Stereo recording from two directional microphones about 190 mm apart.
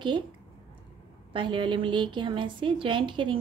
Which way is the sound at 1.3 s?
25° right (ahead or behind).